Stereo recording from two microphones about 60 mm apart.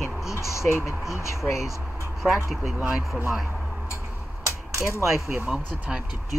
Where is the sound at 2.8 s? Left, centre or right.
Right.